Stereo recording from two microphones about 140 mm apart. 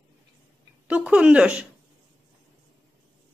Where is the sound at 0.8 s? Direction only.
10° right (ahead or behind).